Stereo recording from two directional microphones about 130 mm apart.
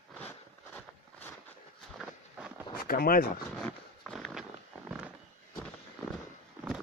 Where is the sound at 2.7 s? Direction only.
90° left.